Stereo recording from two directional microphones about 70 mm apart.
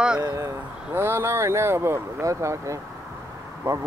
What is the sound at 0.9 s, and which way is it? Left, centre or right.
Speech, right.